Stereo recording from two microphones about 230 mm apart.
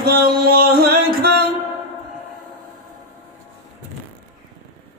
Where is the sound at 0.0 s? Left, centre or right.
Right.